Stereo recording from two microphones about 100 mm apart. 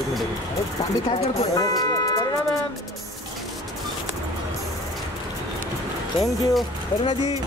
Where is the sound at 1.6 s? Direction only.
40° left (ahead or behind).